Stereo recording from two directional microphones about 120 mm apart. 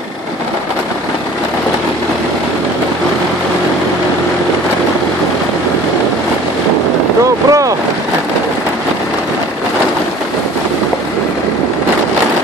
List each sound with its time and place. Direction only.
7.4 s boat: 30° right (ahead or behind)